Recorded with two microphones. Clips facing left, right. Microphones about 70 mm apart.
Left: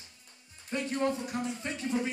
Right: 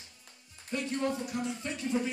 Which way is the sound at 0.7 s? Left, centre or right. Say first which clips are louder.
Left 2 dB; left.